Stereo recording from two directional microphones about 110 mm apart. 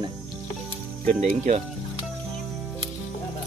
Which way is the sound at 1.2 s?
90° right.